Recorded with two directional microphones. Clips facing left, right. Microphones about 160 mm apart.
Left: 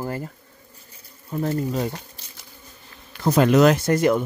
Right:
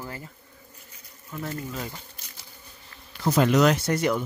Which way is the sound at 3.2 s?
50° left (ahead or behind).